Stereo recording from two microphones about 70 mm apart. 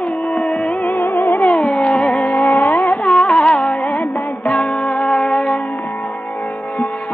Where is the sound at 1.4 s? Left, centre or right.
Centre.